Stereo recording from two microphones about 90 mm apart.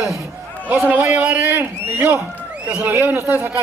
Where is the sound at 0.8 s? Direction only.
15° right (ahead or behind).